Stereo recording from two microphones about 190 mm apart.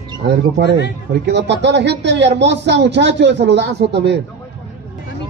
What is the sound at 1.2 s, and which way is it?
Speech, 65° right (ahead or behind).